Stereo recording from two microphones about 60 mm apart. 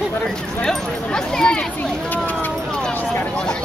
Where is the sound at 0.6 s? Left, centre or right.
Centre.